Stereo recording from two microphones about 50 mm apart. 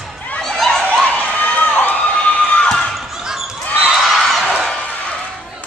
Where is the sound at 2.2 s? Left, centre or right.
Left.